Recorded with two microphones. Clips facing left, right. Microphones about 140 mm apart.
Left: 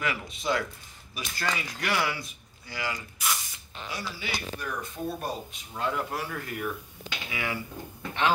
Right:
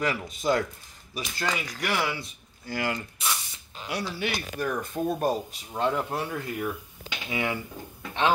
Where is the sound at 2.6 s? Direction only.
50° right (ahead or behind).